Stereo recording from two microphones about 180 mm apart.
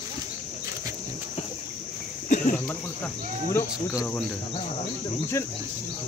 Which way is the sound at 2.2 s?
45° left (ahead or behind).